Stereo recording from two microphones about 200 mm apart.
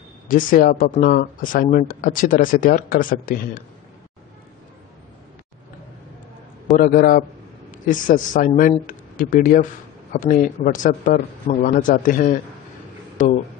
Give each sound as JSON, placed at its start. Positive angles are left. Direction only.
{"t": 0.3, "sound": "speech", "side_deg": 40}
{"t": 6.8, "sound": "speech", "side_deg": 45}